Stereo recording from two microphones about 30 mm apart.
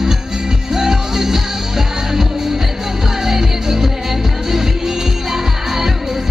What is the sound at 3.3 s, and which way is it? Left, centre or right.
Music, centre.